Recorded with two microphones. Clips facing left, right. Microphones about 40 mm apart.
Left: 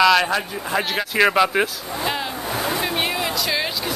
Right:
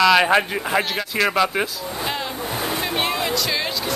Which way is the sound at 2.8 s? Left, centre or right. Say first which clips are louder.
Even; centre.